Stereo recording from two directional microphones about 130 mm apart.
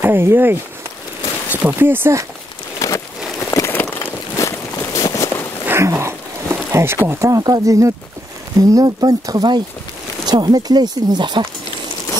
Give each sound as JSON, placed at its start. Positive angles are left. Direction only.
{"t": 0.0, "sound": "speech", "side_deg": -20}
{"t": 2.8, "sound": "a sound", "side_deg": 25}
{"t": 5.7, "sound": "wild animals", "side_deg": -20}
{"t": 7.1, "sound": "speech", "side_deg": -25}